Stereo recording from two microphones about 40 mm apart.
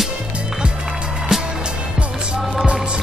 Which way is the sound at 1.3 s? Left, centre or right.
Centre.